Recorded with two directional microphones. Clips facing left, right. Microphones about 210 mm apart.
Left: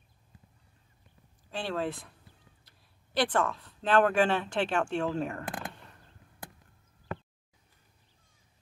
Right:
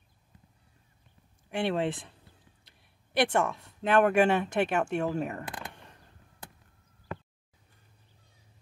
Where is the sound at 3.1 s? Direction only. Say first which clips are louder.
Right 2 dB; 25° right (ahead or behind).